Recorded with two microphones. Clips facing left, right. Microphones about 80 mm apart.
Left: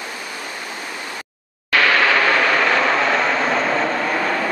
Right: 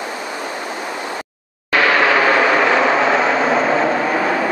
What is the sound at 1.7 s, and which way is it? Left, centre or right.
Vehicle, centre.